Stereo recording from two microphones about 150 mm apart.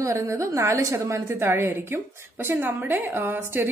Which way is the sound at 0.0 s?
20° right (ahead or behind).